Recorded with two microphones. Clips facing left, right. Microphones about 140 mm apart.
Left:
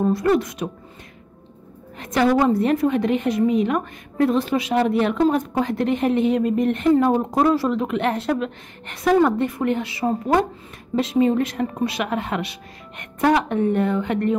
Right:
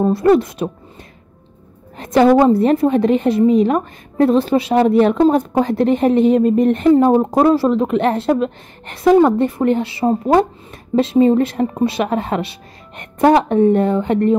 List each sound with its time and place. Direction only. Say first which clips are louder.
0.0 s a woman's voice: right 6 dB; 30° right (ahead or behind)
2.0 s a woman's voice: right 7 dB; 35° right (ahead or behind)